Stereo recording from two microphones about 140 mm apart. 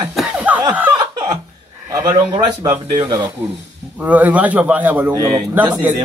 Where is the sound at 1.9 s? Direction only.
30° right (ahead or behind).